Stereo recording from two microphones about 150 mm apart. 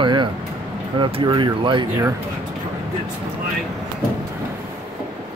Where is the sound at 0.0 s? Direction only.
30° right (ahead or behind).